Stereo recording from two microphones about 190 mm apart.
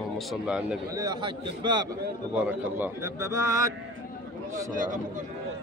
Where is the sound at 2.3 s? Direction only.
10° right (ahead or behind).